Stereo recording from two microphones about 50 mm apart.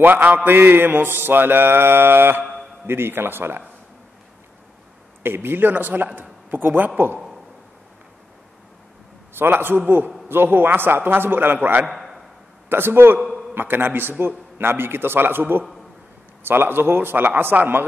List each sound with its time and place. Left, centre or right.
0.0 s a man's voice: right
0.5 s mantra: right
5.2 s a man's voice: right
9.3 s a man's voice: right
10.2 s mantra: right
11.8 s a man's voice: centre
12.6 s mantra: right
17.5 s a man's voice: right